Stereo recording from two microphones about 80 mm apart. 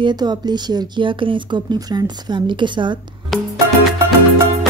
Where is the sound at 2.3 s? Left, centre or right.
Right.